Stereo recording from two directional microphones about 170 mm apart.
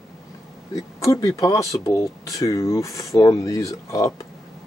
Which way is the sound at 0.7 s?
20° left (ahead or behind).